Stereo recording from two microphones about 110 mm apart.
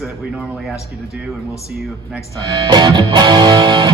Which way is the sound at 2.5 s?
45° right (ahead or behind).